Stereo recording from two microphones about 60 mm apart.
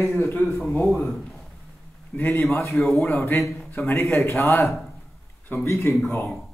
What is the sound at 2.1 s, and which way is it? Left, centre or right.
Speech, left.